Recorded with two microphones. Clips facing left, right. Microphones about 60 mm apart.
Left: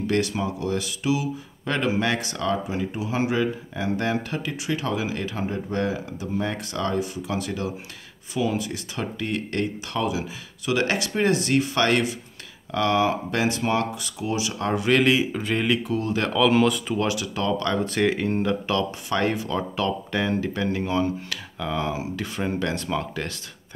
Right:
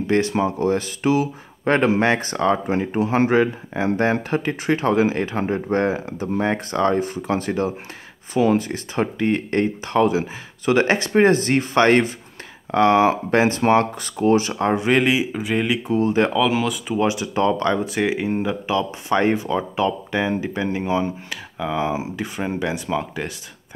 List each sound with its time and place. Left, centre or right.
0.0 s speech: right
15.0 s speech: centre
15.9 s speech: right
16.3 s speech: centre
17.1 s speech: right
17.7 s speech: centre
19.0 s speech: right